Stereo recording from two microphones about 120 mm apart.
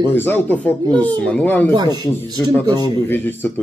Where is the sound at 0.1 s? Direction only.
15° left (ahead or behind).